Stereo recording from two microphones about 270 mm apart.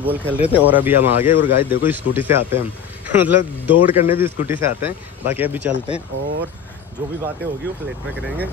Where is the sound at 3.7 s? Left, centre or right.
Centre.